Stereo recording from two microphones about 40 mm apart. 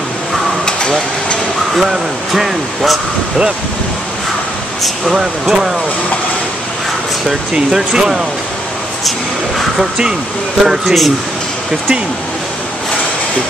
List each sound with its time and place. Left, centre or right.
0.7 s air conditioning: left
1.8 s speech: centre
5.1 s speech: centre
7.2 s speech: centre
10.6 s speech: centre